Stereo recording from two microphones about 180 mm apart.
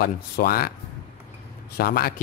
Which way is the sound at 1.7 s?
55° left (ahead or behind).